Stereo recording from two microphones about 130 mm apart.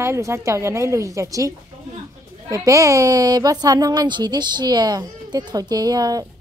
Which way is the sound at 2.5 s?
25° right (ahead or behind).